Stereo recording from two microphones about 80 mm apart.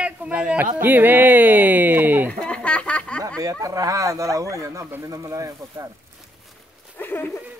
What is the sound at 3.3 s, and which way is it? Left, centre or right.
Speech, right.